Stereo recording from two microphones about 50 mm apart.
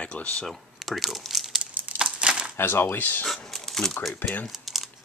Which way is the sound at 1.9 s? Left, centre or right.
Centre.